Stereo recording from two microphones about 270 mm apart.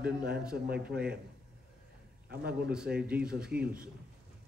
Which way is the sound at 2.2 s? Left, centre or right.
Right.